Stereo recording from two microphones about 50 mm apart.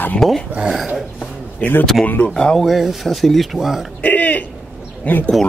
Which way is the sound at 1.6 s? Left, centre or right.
Left.